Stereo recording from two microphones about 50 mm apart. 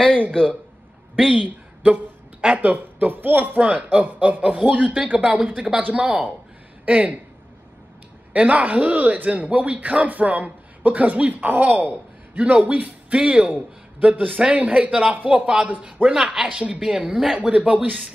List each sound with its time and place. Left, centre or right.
1.3 s a woman's voice: right
3.1 s a man's voice: right
8.3 s a man's voice: right
17.0 s speech: centre
17.4 s a man's voice: right